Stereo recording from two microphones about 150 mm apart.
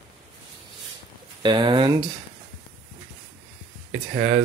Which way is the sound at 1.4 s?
30° right (ahead or behind).